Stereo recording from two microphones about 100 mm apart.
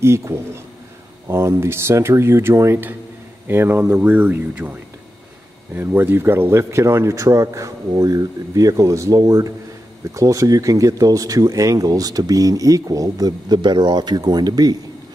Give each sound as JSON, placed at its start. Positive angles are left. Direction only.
{"t": 0.0, "sound": "speech", "side_deg": -25}
{"t": 5.8, "sound": "speech", "side_deg": -20}